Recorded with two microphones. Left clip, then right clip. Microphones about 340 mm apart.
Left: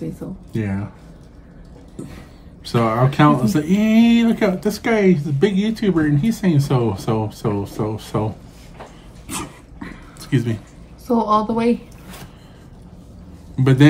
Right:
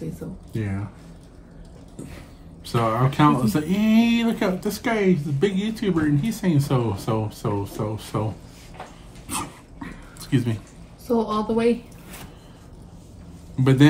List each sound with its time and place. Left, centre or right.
0.2 s a woman's voice: centre
2.6 s speech: centre
9.3 s dog: centre
11.1 s a woman's voice: centre
13.6 s a man's voice: centre